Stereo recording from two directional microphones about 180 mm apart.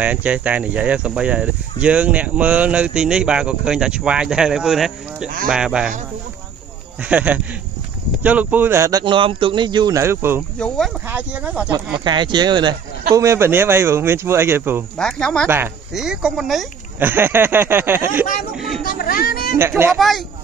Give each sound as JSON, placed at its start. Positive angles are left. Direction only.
{"t": 0.0, "sound": "speech", "side_deg": -10}
{"t": 7.1, "sound": "speech", "side_deg": -5}
{"t": 12.0, "sound": "speech", "side_deg": -25}
{"t": 15.0, "sound": "speech", "side_deg": 5}
{"t": 15.4, "sound": "speech", "side_deg": -10}
{"t": 18.8, "sound": "music", "side_deg": 55}
{"t": 19.9, "sound": "speech", "side_deg": 0}